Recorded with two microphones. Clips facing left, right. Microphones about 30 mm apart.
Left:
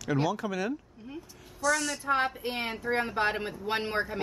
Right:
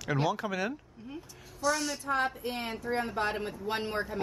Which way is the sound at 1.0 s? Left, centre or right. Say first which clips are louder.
Left 1 dB; centre.